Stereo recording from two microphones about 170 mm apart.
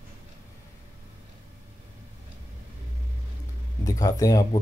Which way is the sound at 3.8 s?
20° left (ahead or behind).